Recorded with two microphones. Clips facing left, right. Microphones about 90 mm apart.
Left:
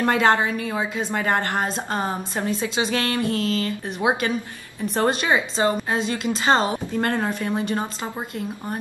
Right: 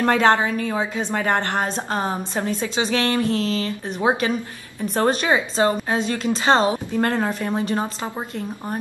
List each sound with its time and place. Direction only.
0.0 s a woman's voice: 10° left (ahead or behind)